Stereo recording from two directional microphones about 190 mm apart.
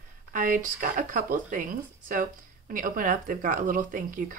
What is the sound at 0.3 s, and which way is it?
Speech, 45° right (ahead or behind).